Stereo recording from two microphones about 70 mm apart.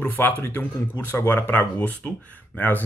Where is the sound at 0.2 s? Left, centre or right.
Left.